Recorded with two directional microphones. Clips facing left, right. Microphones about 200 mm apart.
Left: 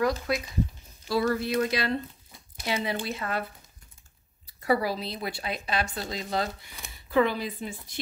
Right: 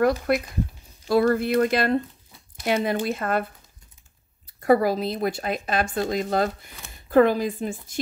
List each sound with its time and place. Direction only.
0.0 s speech: 55° right (ahead or behind)
4.6 s speech: 50° right (ahead or behind)